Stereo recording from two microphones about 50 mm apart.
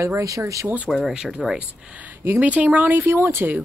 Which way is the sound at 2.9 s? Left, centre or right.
Right.